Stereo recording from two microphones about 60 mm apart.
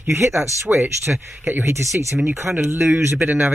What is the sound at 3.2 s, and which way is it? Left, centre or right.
Speech, right.